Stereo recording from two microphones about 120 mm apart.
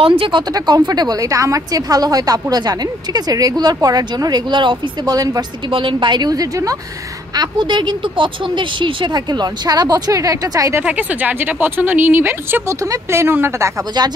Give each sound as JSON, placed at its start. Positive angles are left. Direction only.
{"t": 0.2, "sound": "a woman's voice", "side_deg": -40}
{"t": 5.7, "sound": "a woman's voice", "side_deg": -45}
{"t": 7.3, "sound": "a woman's voice", "side_deg": -40}
{"t": 10.8, "sound": "speech", "side_deg": -10}
{"t": 14.0, "sound": "a woman's voice", "side_deg": -35}